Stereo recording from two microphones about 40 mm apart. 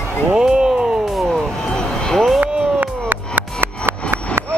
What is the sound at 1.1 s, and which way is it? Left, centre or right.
Vehicle, centre.